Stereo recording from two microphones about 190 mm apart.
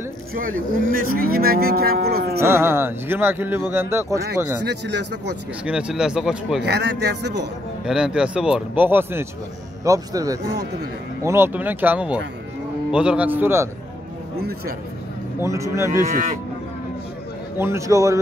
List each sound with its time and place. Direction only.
0.3 s cattle: 45° right (ahead or behind)
2.4 s speech: 10° right (ahead or behind)
4.6 s a man's voice: 65° right (ahead or behind)
5.7 s a man's voice: 5° right (ahead or behind)
6.6 s a man's voice: 65° right (ahead or behind)
7.8 s a man's voice: 5° right (ahead or behind)
10.5 s a man's voice: 60° right (ahead or behind)
11.2 s speech: 10° right (ahead or behind)
15.4 s speech: 15° right (ahead or behind)
15.9 s speech: 40° right (ahead or behind)
17.6 s speech: 15° right (ahead or behind)